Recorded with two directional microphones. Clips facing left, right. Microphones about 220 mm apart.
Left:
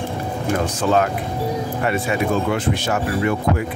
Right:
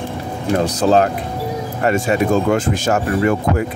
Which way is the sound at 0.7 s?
35° right (ahead or behind).